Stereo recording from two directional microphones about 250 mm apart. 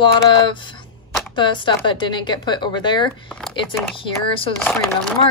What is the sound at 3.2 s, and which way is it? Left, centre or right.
Speech, centre.